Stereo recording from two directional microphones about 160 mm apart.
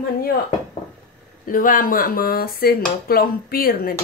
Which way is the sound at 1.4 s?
60° left (ahead or behind).